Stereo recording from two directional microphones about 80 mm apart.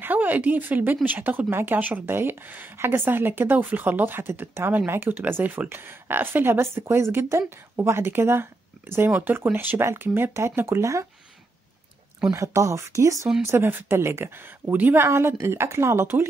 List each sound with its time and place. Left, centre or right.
0.0 s a woman's voice: right
12.3 s a woman's voice: right
13.4 s a woman's voice: right
15.0 s a woman's voice: right